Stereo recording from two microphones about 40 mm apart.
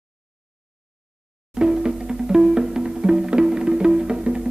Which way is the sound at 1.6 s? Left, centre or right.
Right.